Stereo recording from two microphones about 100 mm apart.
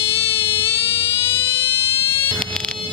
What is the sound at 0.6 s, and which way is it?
Fire alarm, 25° left (ahead or behind).